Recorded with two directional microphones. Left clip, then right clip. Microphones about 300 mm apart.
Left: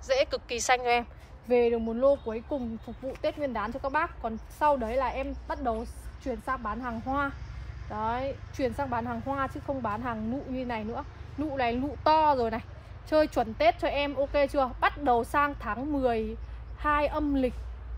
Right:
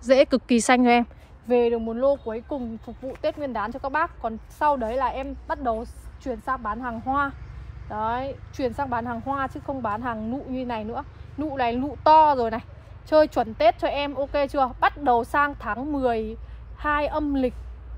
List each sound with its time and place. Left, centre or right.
0.0 s a woman's voice: right